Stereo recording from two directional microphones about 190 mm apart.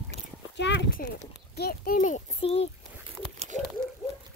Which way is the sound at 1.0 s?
50° left (ahead or behind).